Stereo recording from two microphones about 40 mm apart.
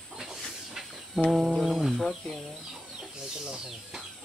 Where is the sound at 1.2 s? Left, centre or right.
Centre.